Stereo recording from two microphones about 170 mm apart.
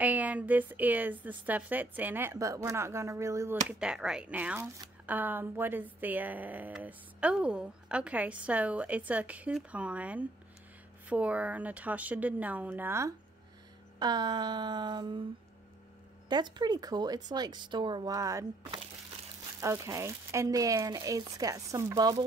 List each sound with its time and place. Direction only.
0.0 s speech: 10° right (ahead or behind)
3.8 s speech: 5° right (ahead or behind)
13.9 s speech: 25° right (ahead or behind)
16.3 s speech: 25° right (ahead or behind)